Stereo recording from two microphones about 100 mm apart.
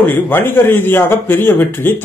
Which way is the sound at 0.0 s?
20° left (ahead or behind).